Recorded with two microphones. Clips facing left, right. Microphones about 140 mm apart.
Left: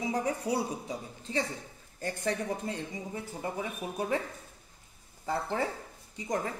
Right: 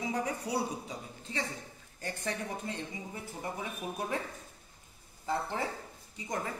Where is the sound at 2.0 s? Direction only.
35° left (ahead or behind).